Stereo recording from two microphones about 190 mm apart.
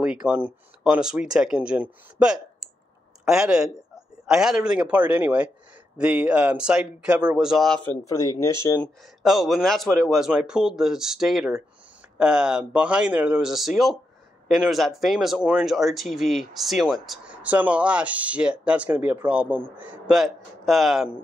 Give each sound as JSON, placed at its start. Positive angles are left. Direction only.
{"t": 0.0, "sound": "speech", "side_deg": -5}
{"t": 8.1, "sound": "speech", "side_deg": 15}
{"t": 9.2, "sound": "speech", "side_deg": 0}